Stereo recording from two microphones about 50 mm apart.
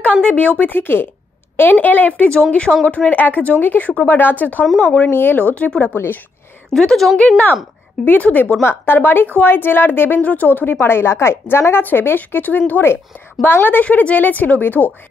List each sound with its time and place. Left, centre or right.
0.2 s speech: left
3.1 s a woman's voice: left
5.6 s speech: left
6.7 s a woman's voice: centre
7.2 s speech: left
8.0 s speech: left
8.6 s a woman's voice: left
10.2 s a woman's voice: left